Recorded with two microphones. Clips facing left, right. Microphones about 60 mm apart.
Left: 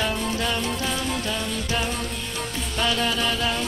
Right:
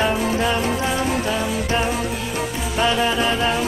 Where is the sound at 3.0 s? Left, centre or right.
Right.